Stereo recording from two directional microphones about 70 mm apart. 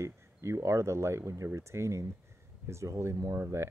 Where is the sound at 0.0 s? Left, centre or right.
Right.